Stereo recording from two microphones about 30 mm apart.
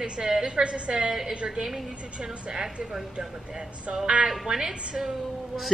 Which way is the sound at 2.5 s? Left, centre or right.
Centre.